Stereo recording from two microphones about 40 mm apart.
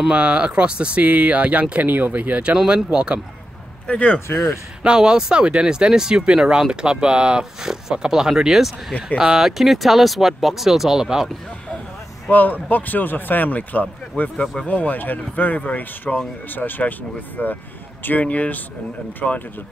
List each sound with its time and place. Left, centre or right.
0.1 s speech: right
2.6 s speech: right
3.8 s speech: left
4.3 s speech: left
4.8 s speech: right
12.3 s speech: left
14.3 s speech: centre
14.7 s speech: left
16.4 s speech: left
17.4 s speech: left
19.2 s speech: left